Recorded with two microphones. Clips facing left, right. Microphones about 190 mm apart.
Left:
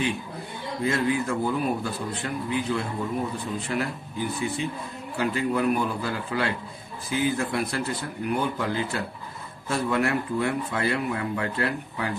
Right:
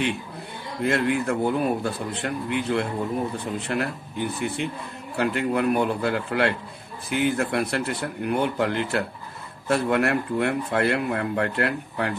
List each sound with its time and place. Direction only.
0.8 s speech: 65° right (ahead or behind)